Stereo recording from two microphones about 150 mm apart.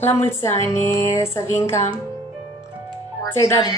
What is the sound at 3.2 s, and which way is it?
Speech, 20° left (ahead or behind).